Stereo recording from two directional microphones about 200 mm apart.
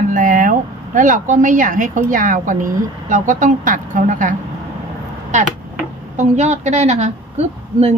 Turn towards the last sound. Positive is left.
turn(degrees=-35)  # may be behind; listen again after turning